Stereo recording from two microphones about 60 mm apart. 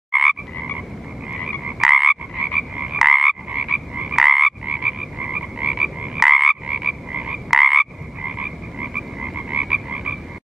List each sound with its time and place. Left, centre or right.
0.1 s croak: centre
1.6 s frog: centre
3.0 s frog: centre
3.4 s croak: centre
4.1 s frog: centre
4.6 s frog: centre
6.1 s frog: centre
6.7 s frog: centre
7.5 s croak: centre
8.2 s frog: centre